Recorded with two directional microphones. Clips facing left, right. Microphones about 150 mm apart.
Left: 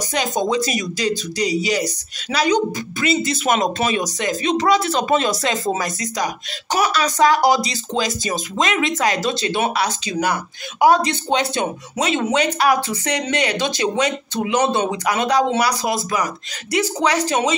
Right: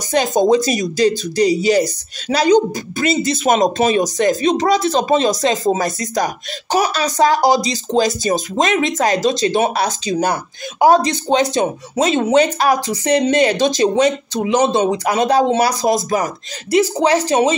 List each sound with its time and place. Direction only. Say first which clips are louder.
0.1 s speech: right 7 dB; 45° right (ahead or behind)
5.0 s speech: right 4 dB; 30° right (ahead or behind)
13.0 s speech: right 8 dB; 25° right (ahead or behind)
13.3 s speech: right 7 dB; 40° right (ahead or behind)
17.3 s speech: right 5 dB; 40° right (ahead or behind)